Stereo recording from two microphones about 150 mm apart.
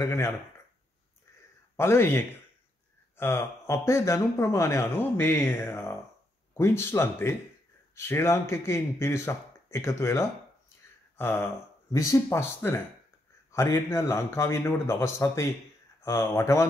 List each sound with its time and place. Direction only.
0.0 s speech: 20° left (ahead or behind)
1.8 s speech: 15° left (ahead or behind)
11.1 s a sound: 15° left (ahead or behind)
11.9 s speech: 20° left (ahead or behind)